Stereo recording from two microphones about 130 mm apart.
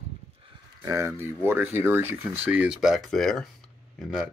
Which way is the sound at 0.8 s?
25° right (ahead or behind).